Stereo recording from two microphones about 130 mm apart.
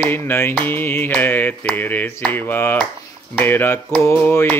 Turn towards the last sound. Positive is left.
turn(degrees=15)  # may be behind; listen again after turning